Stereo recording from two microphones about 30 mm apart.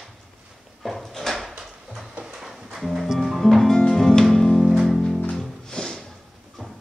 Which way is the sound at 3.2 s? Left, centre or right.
Centre.